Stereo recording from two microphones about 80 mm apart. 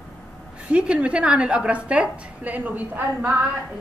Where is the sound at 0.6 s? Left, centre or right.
Centre.